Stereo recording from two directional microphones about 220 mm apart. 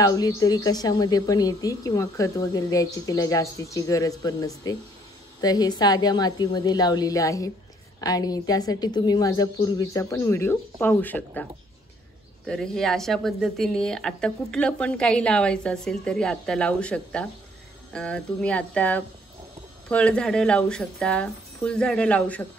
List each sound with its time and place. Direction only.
0.0 s a woman's voice: 15° left (ahead or behind)
12.4 s speech: centre (ahead or behind)